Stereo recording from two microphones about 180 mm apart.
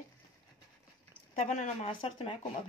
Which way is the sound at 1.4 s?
40° left (ahead or behind).